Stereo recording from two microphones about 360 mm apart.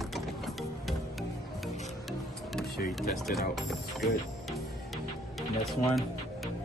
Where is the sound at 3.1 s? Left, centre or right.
Centre.